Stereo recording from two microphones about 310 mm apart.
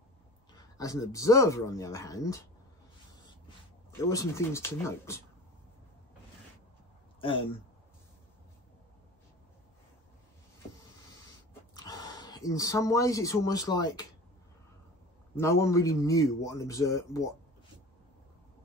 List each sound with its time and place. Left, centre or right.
0.5 s speech: centre
4.1 s speech: centre
7.2 s speech: centre
11.7 s speech: centre
15.3 s speech: centre